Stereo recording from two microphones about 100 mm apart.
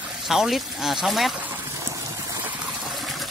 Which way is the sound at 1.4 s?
20° right (ahead or behind).